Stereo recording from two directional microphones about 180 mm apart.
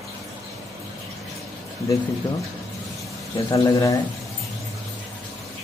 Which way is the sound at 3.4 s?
20° left (ahead or behind).